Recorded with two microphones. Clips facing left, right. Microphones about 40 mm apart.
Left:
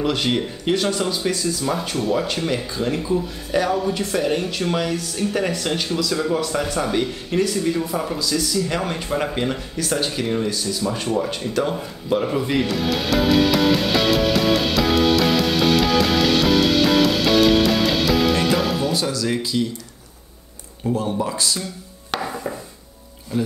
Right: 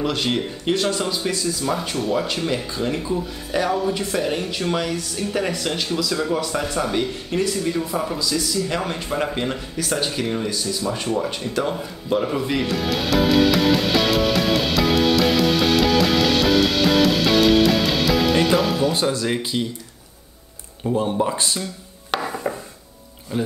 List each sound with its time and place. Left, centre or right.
0.0 s speech: centre
11.1 s music: centre
18.9 s speech: right
20.9 s speech: right
22.1 s dishes: centre
23.3 s speech: right